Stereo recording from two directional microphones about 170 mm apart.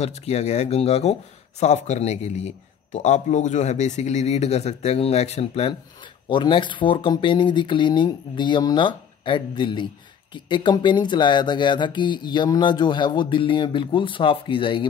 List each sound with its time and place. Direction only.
0.0 s a man's voice: 40° left (ahead or behind)